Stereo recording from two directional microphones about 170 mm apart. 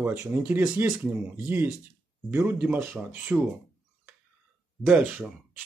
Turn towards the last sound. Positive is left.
turn(degrees=-5)  # may be behind; listen again after turning